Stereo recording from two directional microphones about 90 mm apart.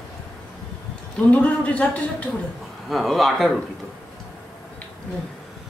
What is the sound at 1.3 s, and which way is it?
Speech, 15° left (ahead or behind).